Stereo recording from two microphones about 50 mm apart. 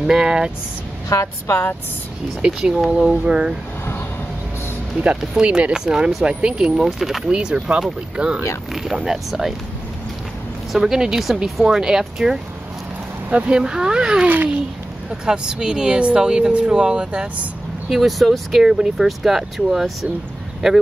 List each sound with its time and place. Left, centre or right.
0.0 s speech: centre
1.1 s a woman's voice: left
2.4 s speech: right
5.2 s speech: centre
7.0 s speech: centre
7.2 s speech: centre
8.7 s speech: centre
10.7 s speech: centre
13.3 s speech: right
14.2 s a child's voice: right
15.0 s speech: centre
17.8 s speech: centre